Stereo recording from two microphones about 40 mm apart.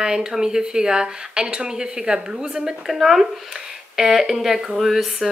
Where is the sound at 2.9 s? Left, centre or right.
Centre.